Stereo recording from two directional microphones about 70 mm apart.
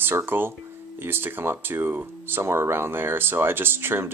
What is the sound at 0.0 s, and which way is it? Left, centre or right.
Speech, right.